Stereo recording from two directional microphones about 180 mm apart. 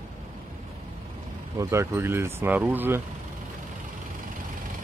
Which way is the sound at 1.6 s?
15° right (ahead or behind).